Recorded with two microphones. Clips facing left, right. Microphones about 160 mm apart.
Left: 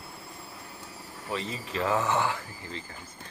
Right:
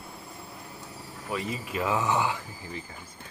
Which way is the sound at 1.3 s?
10° right (ahead or behind).